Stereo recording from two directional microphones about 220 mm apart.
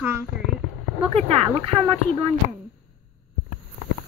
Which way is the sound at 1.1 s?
25° right (ahead or behind).